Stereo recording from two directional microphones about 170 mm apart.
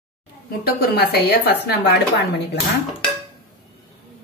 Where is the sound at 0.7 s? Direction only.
70° left (ahead or behind).